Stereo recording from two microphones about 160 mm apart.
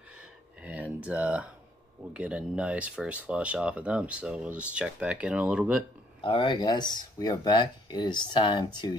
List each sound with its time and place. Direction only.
0.6 s a sound: 10° right (ahead or behind)
2.1 s speech: 5° right (ahead or behind)
6.2 s speech: 30° left (ahead or behind)